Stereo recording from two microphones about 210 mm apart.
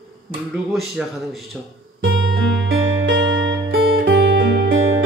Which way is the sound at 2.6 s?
60° right (ahead or behind).